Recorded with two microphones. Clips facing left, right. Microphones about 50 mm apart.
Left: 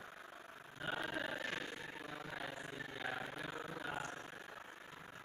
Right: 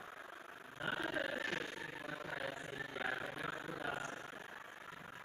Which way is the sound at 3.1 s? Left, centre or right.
Centre.